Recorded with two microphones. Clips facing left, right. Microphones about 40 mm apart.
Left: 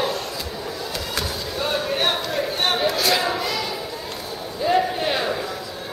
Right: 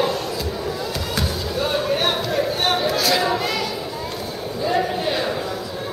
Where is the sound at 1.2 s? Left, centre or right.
Centre.